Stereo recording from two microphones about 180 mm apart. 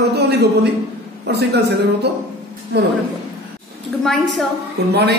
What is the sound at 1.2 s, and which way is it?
Speech, 65° right (ahead or behind).